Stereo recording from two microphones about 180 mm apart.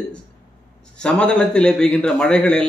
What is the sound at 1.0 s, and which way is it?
A man's voice, 5° left (ahead or behind).